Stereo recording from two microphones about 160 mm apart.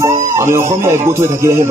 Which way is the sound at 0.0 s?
15° right (ahead or behind).